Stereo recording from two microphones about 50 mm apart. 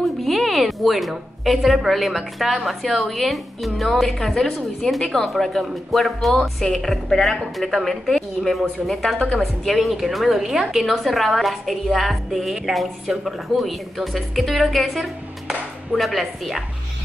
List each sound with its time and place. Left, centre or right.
0.2 s a woman's voice: centre